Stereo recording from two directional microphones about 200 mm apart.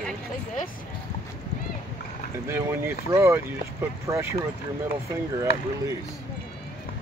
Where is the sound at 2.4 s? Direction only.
15° right (ahead or behind).